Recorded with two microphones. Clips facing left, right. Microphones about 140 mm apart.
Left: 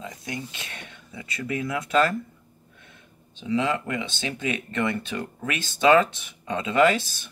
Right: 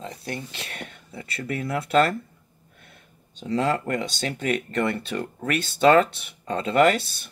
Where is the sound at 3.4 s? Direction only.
40° right (ahead or behind).